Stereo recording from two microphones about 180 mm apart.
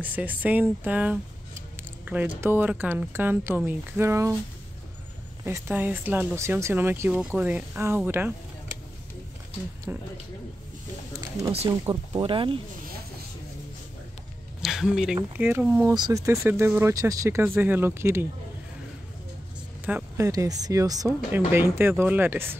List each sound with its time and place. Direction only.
0.0 s speech: 10° right (ahead or behind)
5.4 s speech: 15° right (ahead or behind)
9.9 s speech: 10° right (ahead or behind)
12.1 s speech: 30° right (ahead or behind)
14.6 s a sound: centre (ahead or behind)
15.3 s speech: 10° right (ahead or behind)
19.8 s speech: 15° right (ahead or behind)